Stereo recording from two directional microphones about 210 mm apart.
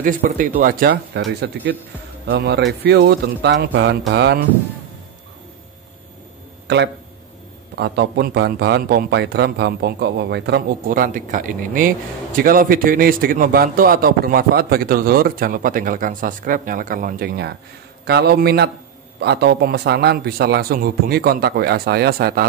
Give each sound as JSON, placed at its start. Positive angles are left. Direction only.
{"t": 0.0, "sound": "a man's voice", "side_deg": -40}
{"t": 7.7, "sound": "a man's voice", "side_deg": -50}